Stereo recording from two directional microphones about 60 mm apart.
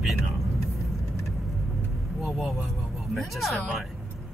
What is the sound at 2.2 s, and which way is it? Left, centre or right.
Speech, centre.